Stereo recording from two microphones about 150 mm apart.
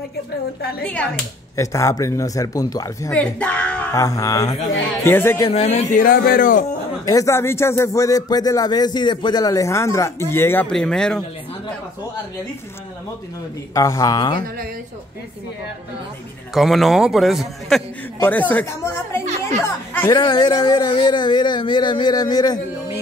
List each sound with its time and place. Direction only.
0.8 s speech: 10° left (ahead or behind)
1.6 s a man's voice: 20° left (ahead or behind)
3.1 s speech: 10° left (ahead or behind)
3.9 s a man's voice: 20° left (ahead or behind)
5.5 s speech: 45° left (ahead or behind)
5.9 s speech: 70° left (ahead or behind)
7.1 s a man's voice: 20° left (ahead or behind); by 11.2 s 5° left (ahead or behind)
13.7 s a man's voice: 25° left (ahead or behind)
16.5 s a man's voice: centre (ahead or behind)
18.2 s speech: 10° left (ahead or behind)
20.2 s a man's voice: 25° left (ahead or behind)